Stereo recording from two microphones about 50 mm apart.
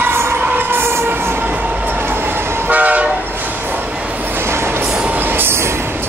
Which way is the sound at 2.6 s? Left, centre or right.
Right.